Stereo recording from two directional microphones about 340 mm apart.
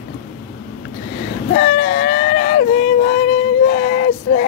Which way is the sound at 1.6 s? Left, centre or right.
Left.